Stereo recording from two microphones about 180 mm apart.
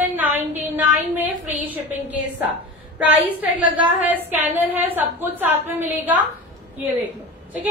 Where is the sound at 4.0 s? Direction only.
10° right (ahead or behind).